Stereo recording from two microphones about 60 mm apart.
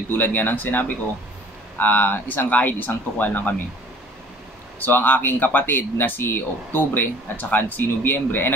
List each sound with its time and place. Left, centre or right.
0.1 s speech: left
4.8 s speech: left